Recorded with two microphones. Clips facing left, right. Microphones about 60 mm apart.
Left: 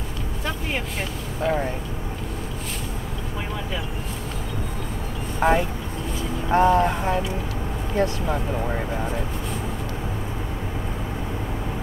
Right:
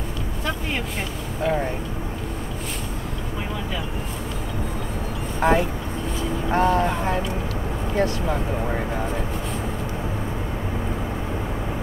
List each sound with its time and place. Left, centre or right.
1.4 s speech: centre
5.4 s speech: centre